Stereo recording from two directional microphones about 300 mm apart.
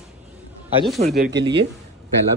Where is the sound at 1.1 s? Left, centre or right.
Right.